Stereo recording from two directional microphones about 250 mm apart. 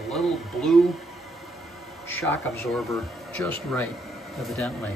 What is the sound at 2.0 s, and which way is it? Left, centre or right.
A man's voice, centre.